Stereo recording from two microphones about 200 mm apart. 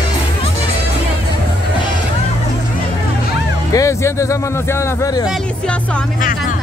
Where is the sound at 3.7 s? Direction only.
15° left (ahead or behind).